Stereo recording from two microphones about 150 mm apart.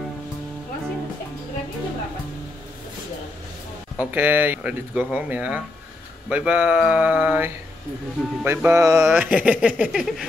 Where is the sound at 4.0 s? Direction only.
10° right (ahead or behind).